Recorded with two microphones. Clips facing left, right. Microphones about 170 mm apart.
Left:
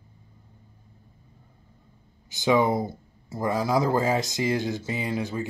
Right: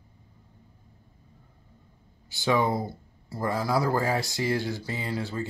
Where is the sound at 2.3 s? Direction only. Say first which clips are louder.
Left 3 dB; 20° left (ahead or behind).